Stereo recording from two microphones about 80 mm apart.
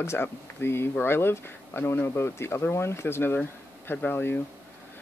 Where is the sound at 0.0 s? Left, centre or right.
Left.